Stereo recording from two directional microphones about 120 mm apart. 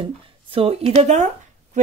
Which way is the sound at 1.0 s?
80° right.